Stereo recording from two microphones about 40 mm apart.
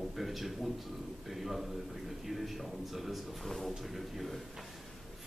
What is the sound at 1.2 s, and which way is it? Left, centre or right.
A man's voice, centre.